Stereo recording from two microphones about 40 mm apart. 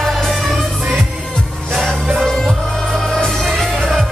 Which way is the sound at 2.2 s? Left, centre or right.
Centre.